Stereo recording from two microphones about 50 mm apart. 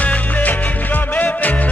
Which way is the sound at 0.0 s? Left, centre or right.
Left.